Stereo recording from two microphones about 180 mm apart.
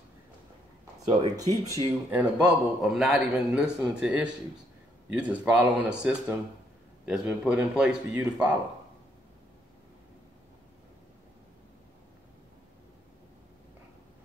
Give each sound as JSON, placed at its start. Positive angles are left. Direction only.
{"t": 1.0, "sound": "speech", "side_deg": -20}
{"t": 2.0, "sound": "a man's voice", "side_deg": -5}